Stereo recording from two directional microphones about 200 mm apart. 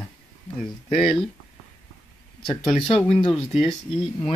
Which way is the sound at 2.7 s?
25° left (ahead or behind).